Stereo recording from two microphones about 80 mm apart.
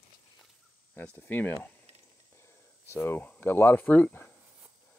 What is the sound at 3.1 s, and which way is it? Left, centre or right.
Speech, left.